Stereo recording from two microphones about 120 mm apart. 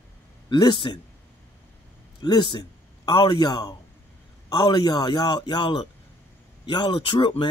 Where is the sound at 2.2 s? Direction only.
35° left (ahead or behind).